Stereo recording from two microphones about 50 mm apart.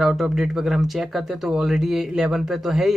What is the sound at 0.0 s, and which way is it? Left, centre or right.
Speech, centre.